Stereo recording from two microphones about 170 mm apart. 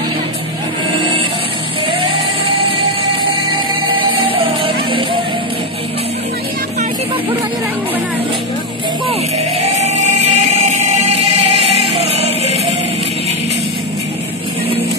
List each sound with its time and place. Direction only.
3.9 s music: 30° right (ahead or behind)
9.6 s music: 40° right (ahead or behind)